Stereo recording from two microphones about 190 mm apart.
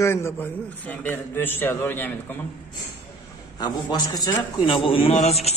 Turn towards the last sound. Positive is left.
turn(degrees=35)  # may be behind; listen again after turning